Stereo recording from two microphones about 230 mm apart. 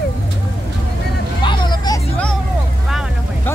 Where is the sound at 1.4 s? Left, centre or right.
Centre.